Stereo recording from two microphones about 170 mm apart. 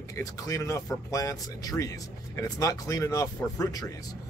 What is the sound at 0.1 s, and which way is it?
Speech, 20° left (ahead or behind).